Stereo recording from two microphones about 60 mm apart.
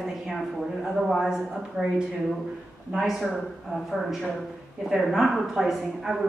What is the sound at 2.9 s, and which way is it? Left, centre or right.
A woman's voice, centre.